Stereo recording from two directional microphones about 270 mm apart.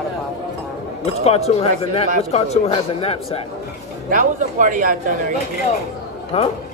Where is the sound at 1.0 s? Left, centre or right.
Left.